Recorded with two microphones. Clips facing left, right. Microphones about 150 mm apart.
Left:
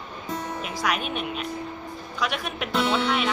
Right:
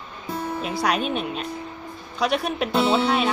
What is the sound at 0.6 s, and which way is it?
A woman's voice, 35° right (ahead or behind).